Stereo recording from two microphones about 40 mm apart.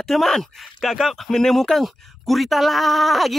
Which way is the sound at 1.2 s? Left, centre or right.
Centre.